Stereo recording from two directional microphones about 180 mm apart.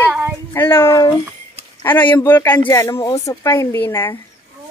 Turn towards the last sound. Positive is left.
turn(degrees=10)  # may be behind; listen again after turning